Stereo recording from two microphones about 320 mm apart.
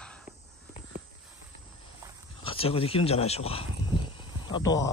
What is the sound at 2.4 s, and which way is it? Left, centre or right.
Speech, centre.